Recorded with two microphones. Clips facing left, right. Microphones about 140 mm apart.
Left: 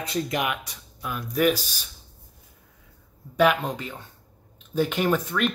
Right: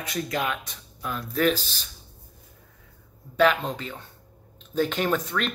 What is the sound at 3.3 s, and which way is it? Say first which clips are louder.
Speech: even; 10° left (ahead or behind).